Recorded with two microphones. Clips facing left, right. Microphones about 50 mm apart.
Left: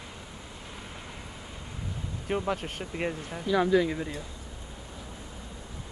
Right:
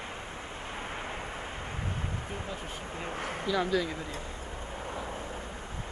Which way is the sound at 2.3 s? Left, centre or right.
Left.